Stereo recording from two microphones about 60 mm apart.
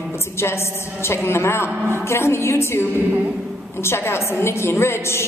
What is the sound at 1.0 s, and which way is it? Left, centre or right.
A woman's voice, left.